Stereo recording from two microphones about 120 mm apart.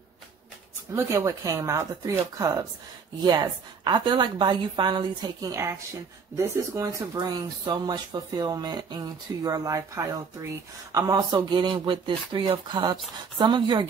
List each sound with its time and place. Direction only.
0.9 s speech: 25° right (ahead or behind)